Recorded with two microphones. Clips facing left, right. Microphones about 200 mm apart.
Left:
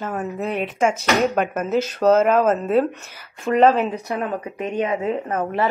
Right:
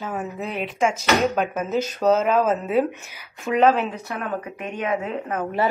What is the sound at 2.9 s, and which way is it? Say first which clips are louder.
Speech: left 1 dB; 15° right (ahead or behind).